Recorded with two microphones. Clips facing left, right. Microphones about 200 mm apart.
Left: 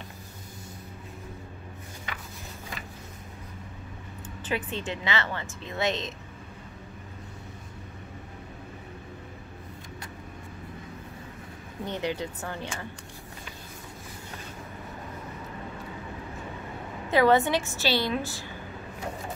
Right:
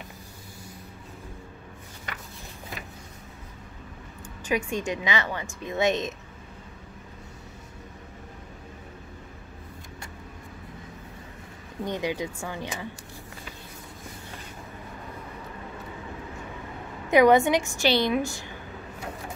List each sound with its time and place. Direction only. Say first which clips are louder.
4.5 s a woman's voice: right 4 dB; 10° right (ahead or behind)
11.8 s a woman's voice: right 2 dB; 15° right (ahead or behind)
17.1 s a woman's voice: right 3 dB; 15° right (ahead or behind)